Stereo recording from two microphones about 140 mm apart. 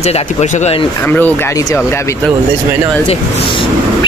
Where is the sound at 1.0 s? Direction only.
15° left (ahead or behind).